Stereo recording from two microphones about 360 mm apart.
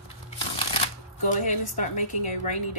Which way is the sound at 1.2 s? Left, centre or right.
Centre.